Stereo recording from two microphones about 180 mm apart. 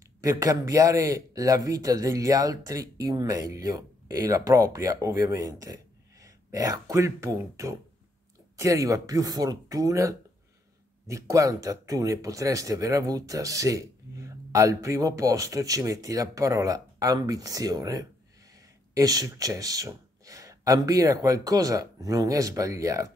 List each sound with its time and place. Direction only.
0.2 s speech: 20° right (ahead or behind)